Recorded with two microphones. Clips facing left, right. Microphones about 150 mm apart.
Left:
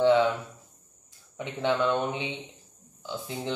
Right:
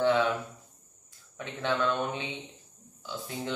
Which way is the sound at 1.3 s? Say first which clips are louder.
Left 4 dB; 20° left (ahead or behind).